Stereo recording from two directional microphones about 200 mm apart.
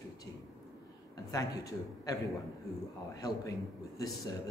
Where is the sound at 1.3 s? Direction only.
15° left (ahead or behind).